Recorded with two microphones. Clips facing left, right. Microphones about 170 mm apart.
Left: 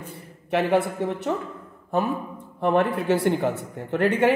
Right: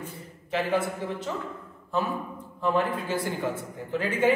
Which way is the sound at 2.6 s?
65° left (ahead or behind).